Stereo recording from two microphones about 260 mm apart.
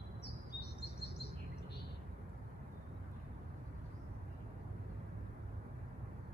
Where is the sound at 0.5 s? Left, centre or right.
Left.